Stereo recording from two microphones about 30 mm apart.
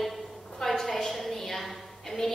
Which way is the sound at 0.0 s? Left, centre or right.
Centre.